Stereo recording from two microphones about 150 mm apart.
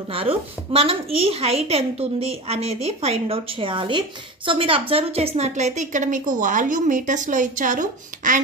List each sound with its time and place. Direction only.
0.1 s a woman's voice: 40° right (ahead or behind); by 8.4 s 60° right (ahead or behind)